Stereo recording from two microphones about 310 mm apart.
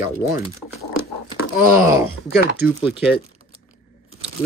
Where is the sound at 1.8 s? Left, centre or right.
Centre.